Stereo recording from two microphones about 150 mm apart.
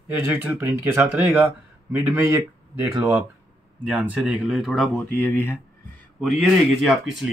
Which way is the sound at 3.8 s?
10° right (ahead or behind).